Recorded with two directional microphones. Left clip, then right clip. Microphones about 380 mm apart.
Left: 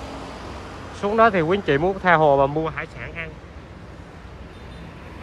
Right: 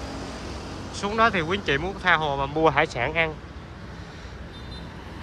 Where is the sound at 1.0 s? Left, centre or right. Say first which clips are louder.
Left 5 dB; centre.